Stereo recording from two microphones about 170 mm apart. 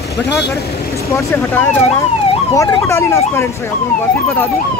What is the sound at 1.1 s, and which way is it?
Speech, 15° left (ahead or behind).